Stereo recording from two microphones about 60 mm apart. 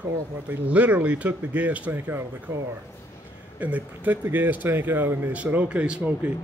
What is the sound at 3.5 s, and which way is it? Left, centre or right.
Speech, right.